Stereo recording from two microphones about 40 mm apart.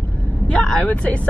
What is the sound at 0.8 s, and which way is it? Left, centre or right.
Speech, left.